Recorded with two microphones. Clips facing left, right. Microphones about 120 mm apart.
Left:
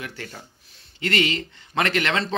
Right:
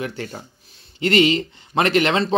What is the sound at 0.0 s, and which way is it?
Speech, 30° right (ahead or behind).